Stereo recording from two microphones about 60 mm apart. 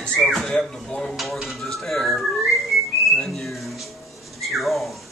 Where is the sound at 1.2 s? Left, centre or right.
Centre.